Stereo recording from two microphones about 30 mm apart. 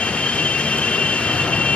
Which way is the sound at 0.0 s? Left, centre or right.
Left.